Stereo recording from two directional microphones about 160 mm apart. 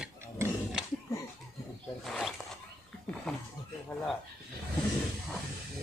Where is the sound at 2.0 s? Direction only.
Centre (ahead or behind).